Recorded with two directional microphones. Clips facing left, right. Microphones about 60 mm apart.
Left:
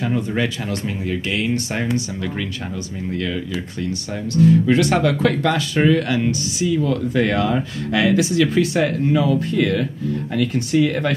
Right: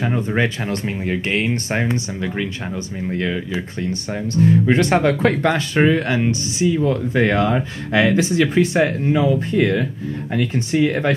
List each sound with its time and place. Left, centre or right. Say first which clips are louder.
0.0 s speech: right 1 dB; right